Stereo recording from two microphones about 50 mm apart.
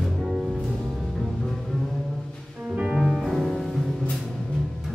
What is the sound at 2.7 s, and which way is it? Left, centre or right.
Music, centre.